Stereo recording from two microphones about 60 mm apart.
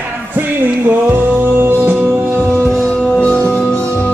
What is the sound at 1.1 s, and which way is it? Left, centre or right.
Music, right.